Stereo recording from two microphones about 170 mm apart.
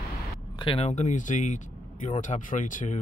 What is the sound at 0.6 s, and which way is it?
Speech, 35° left (ahead or behind).